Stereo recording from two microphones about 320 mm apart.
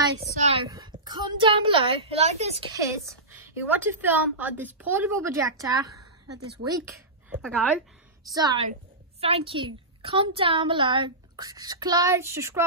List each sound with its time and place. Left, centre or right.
0.5 s a woman's voice: centre
2.8 s a woman's voice: centre